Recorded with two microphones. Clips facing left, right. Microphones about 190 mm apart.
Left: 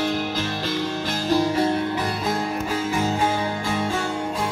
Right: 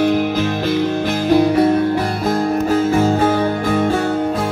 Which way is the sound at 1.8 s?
45° right (ahead or behind).